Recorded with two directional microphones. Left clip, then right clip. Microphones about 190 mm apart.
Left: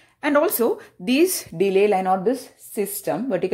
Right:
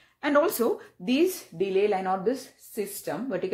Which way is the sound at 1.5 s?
45° left (ahead or behind).